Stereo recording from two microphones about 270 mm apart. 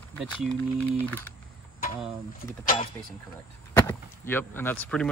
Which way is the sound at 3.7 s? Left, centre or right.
Centre.